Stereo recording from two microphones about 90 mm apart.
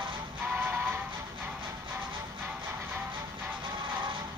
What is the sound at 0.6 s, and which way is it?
Music, 25° right (ahead or behind).